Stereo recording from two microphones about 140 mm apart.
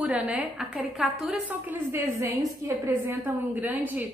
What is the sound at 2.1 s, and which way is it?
Speech, 20° right (ahead or behind).